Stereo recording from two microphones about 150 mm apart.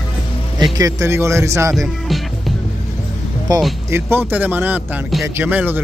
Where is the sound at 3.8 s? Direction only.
15° right (ahead or behind).